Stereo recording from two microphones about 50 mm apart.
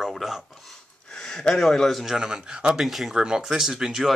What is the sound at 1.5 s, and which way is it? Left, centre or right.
Speech, centre.